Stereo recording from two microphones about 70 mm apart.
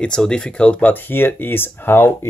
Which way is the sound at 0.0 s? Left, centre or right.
Centre.